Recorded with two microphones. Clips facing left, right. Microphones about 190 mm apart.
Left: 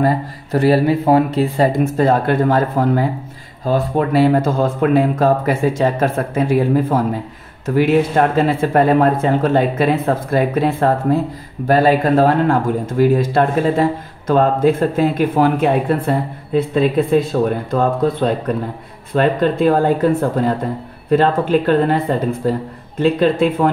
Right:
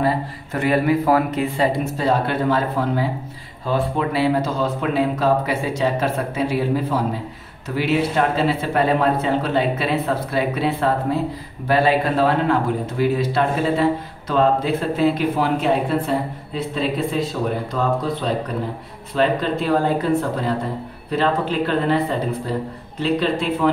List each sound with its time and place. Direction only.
0.0 s speech: 35° left (ahead or behind)
2.0 s speech: 50° left (ahead or behind)